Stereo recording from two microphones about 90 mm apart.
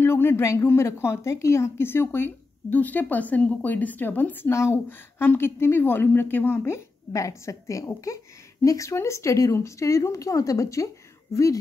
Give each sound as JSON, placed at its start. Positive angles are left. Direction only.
{"t": 0.0, "sound": "a woman's voice", "side_deg": 25}
{"t": 7.1, "sound": "a woman's voice", "side_deg": 40}